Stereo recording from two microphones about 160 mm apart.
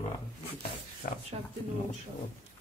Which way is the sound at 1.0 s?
55° left (ahead or behind).